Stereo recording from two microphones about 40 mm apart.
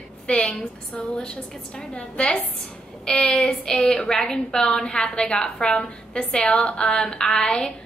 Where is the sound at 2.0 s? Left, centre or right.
Left.